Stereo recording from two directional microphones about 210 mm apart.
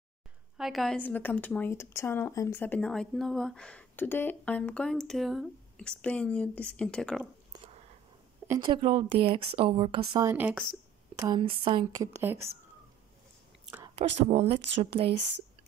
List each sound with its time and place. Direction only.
0.6 s a woman's voice: centre (ahead or behind)
8.5 s speech: 20° right (ahead or behind)
10.3 s speech: 5° right (ahead or behind)
11.1 s speech: 20° right (ahead or behind)
13.9 s speech: 30° right (ahead or behind)